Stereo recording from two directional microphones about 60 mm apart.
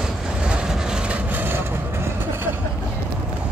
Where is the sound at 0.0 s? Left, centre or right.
Centre.